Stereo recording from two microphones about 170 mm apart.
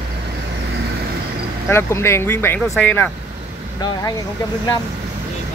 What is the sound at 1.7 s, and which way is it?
Speech, 15° left (ahead or behind).